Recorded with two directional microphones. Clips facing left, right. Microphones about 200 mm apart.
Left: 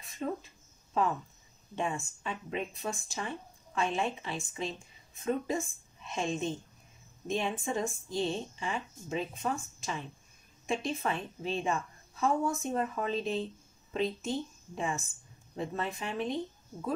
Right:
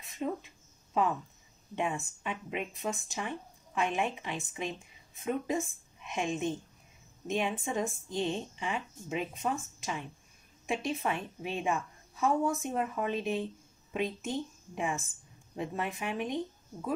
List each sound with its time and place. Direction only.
0.2 s speech: 10° right (ahead or behind)
1.8 s speech: 15° right (ahead or behind)
15.5 s speech: 10° right (ahead or behind)